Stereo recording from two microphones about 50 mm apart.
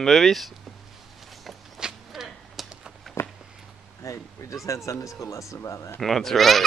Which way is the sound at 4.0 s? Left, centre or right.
Left.